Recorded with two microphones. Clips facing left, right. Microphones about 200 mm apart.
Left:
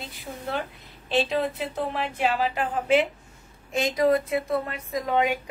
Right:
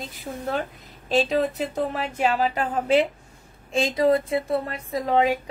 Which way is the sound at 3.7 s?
30° right (ahead or behind).